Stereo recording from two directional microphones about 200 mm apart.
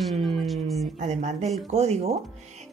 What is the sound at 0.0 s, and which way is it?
Music, centre (ahead or behind).